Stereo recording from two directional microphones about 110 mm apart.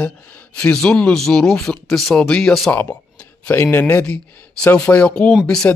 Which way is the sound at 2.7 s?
15° left (ahead or behind).